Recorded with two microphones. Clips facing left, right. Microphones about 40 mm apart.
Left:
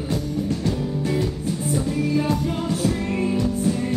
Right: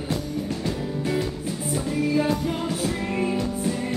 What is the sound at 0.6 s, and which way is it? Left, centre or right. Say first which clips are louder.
Music: left 3 dB; centre.